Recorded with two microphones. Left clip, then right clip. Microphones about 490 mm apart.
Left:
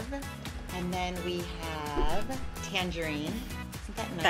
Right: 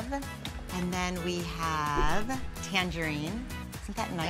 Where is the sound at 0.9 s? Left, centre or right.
Right.